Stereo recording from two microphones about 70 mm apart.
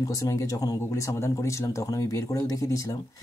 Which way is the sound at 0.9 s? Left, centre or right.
Left.